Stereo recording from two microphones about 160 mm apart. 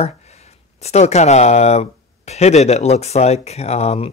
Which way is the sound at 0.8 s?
45° left (ahead or behind).